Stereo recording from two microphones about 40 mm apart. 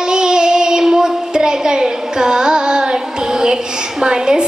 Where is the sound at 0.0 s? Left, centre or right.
Centre.